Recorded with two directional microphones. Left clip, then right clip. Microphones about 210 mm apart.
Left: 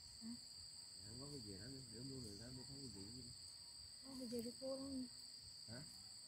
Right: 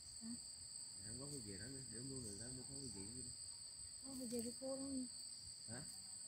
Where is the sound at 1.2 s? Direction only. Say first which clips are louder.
Right 1 dB; 30° right (ahead or behind).